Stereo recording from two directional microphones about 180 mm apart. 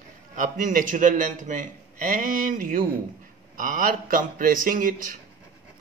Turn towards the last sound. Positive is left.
turn(degrees=-50)  # may be behind; listen again after turning